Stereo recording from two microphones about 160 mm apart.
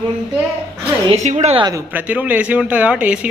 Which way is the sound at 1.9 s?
10° right (ahead or behind).